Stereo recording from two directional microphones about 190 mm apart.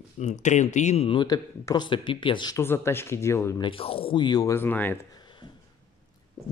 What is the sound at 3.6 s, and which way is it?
Speech, 30° left (ahead or behind).